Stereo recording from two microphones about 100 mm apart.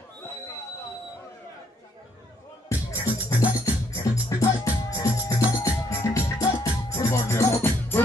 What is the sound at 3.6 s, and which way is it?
Music, 30° left (ahead or behind).